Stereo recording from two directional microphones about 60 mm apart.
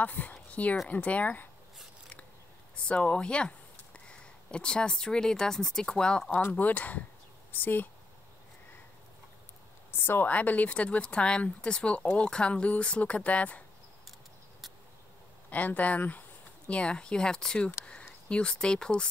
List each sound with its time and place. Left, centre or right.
0.0 s speech: left
2.7 s speech: centre
6.6 s speech: left
9.8 s a woman's voice: left
10.3 s speech: left
15.5 s a sound: left
16.7 s speech: centre